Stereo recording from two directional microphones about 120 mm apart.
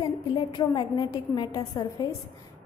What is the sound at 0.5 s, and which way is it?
A woman's voice, 35° left (ahead or behind).